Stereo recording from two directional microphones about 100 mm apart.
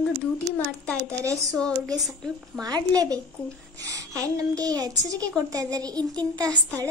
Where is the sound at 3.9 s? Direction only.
35° right (ahead or behind).